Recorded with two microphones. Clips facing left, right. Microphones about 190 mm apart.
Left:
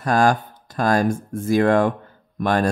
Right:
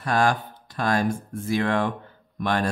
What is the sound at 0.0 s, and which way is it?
Speech, 45° left (ahead or behind).